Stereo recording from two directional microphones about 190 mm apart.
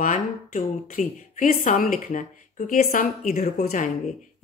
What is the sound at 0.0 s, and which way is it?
A woman's voice, 40° left (ahead or behind).